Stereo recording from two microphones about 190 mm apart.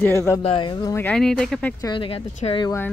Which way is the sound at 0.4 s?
30° left (ahead or behind).